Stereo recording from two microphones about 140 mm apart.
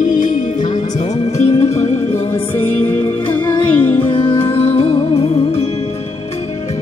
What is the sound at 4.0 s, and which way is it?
Music, 40° left (ahead or behind).